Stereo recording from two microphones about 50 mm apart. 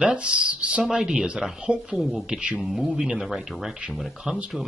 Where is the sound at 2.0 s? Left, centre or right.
Centre.